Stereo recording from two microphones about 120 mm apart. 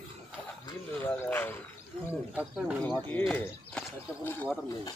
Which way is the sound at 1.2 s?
15° left (ahead or behind).